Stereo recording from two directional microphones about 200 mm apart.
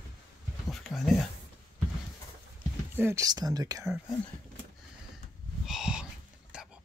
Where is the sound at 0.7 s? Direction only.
Centre (ahead or behind).